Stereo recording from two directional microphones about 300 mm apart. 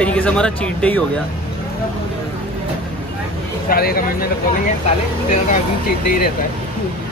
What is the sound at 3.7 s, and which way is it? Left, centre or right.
Speech, left.